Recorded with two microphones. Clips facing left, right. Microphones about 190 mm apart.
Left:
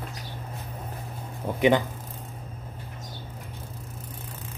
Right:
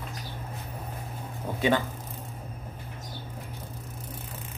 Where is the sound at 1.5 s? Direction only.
20° left (ahead or behind).